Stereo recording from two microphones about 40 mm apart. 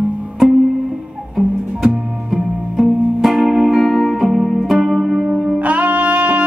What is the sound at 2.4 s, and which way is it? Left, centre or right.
Music, centre.